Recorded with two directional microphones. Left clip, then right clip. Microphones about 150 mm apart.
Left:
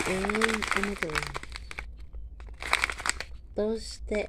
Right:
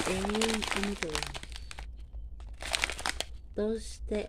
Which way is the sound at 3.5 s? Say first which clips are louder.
Left 4 dB; 20° left (ahead or behind).